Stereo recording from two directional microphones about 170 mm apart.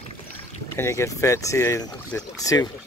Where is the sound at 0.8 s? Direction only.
15° left (ahead or behind).